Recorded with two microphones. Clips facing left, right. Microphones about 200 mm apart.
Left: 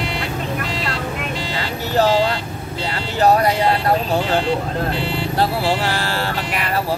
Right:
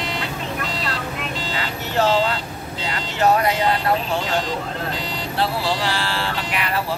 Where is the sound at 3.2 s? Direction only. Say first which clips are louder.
Left 3 dB; 35° left (ahead or behind).